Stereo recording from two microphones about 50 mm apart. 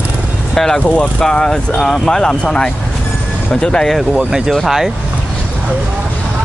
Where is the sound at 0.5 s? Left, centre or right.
Centre.